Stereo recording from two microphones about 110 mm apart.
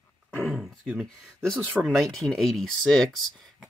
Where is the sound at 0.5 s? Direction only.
5° right (ahead or behind).